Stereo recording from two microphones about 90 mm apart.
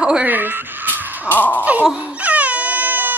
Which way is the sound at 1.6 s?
15° right (ahead or behind).